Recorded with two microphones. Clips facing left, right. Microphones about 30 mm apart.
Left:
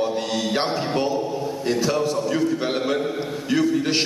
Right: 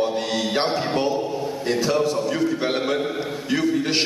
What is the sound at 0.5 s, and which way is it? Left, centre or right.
Speech, centre.